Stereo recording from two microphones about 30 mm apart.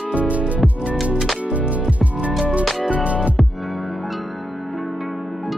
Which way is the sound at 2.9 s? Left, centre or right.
Right.